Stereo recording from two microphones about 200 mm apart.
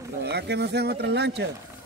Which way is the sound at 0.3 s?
55° right (ahead or behind).